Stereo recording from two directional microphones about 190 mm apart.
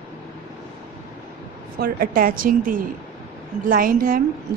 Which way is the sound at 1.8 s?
50° right (ahead or behind).